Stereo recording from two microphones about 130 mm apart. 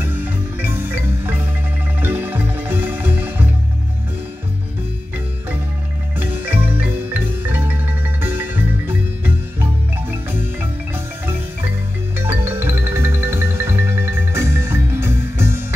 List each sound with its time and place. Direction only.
0.0 s marimba: 15° right (ahead or behind)
6.1 s music: 15° right (ahead or behind)
12.2 s music: 20° right (ahead or behind)